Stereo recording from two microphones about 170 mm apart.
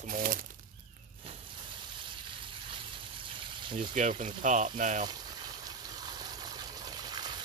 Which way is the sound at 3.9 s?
45° right (ahead or behind).